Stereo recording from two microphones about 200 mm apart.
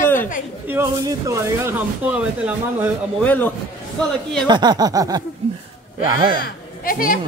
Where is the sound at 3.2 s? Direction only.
10° left (ahead or behind).